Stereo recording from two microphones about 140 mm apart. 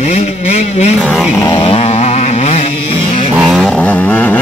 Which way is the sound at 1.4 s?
40° left (ahead or behind).